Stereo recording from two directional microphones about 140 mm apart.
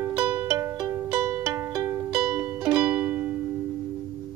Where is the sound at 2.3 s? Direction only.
10° right (ahead or behind).